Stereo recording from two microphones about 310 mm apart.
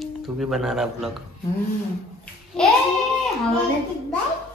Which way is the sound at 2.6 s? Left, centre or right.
Centre.